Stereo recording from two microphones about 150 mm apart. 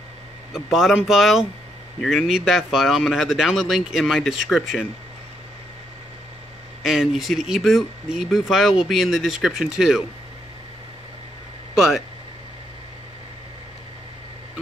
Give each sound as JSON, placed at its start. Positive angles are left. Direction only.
{"t": 0.5, "sound": "speech", "side_deg": -5}
{"t": 6.8, "sound": "speech", "side_deg": -5}
{"t": 11.7, "sound": "speech", "side_deg": -5}